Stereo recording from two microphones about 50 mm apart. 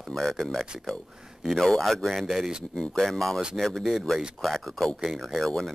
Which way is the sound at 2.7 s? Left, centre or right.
Centre.